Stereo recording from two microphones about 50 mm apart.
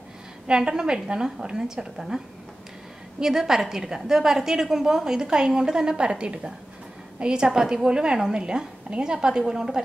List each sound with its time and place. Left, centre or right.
0.5 s a woman's voice: centre